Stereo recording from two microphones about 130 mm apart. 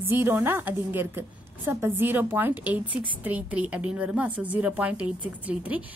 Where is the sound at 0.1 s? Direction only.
15° right (ahead or behind).